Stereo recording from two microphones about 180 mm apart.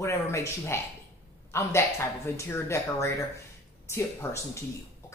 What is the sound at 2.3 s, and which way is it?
A woman's voice, 15° left (ahead or behind).